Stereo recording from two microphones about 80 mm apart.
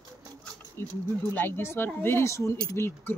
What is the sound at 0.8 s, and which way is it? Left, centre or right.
Speech, left.